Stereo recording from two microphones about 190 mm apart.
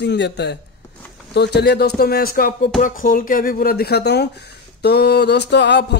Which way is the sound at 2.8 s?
45° left (ahead or behind).